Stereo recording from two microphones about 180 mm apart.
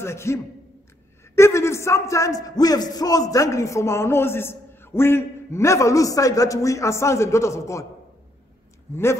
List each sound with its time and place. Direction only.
0.0 s a man's voice: 15° left (ahead or behind)
8.9 s a man's voice: 15° left (ahead or behind)